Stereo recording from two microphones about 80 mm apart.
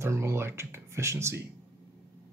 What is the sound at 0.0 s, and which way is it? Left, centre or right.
Speech, right.